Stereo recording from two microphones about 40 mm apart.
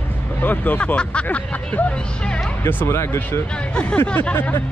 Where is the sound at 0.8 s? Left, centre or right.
Left.